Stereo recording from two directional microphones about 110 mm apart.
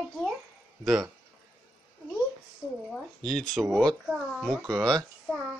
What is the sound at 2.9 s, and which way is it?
Speech, 5° left (ahead or behind).